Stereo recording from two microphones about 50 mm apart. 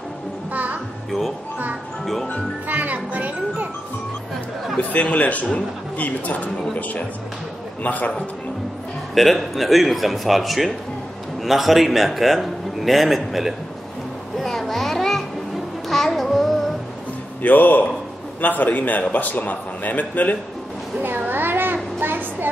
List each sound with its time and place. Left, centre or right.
0.5 s music: right
2.7 s music: right
4.7 s a man's voice: left
7.8 s a man's voice: left
9.1 s a man's voice: centre
14.4 s children playing: centre
15.9 s music: centre
17.4 s a man's voice: left
21.0 s a sound: right